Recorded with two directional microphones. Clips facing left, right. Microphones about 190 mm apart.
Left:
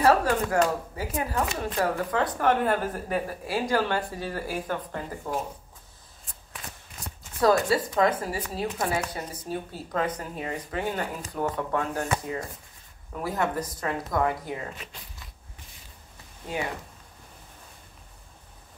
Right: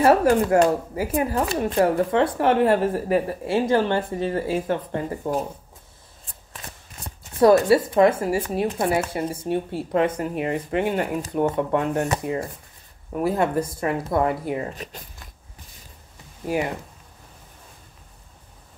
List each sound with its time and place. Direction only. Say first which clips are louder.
0.0 s speech: right 5 dB; 25° right (ahead or behind)
7.3 s speech: right 7 dB; 25° right (ahead or behind)
14.8 s speech: right 7 dB; 45° right (ahead or behind)